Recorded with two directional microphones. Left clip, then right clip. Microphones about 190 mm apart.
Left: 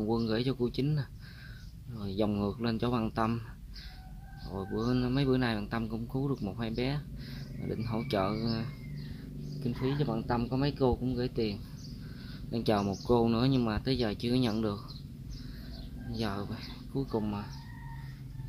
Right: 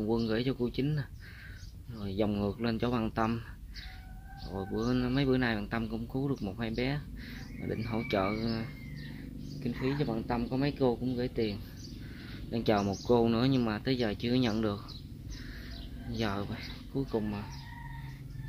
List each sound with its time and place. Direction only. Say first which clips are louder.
0.0 s speech: even; 20° left (ahead or behind)
4.5 s speech: even; 15° left (ahead or behind)
16.1 s speech: right 2 dB; 10° left (ahead or behind)